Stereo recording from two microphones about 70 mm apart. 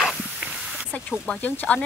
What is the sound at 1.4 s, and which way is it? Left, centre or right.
Speech, centre.